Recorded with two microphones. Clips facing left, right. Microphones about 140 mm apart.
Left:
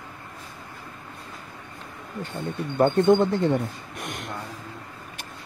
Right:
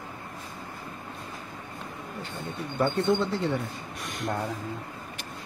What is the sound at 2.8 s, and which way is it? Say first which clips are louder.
Speech: left 7 dB; 50° left (ahead or behind).